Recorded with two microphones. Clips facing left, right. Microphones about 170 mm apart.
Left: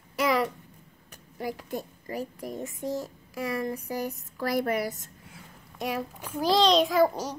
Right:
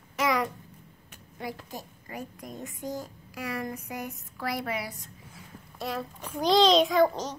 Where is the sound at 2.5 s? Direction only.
25° left (ahead or behind).